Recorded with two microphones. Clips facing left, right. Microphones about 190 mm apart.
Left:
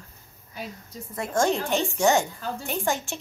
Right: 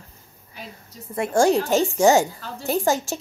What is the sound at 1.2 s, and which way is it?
Speech, 35° right (ahead or behind).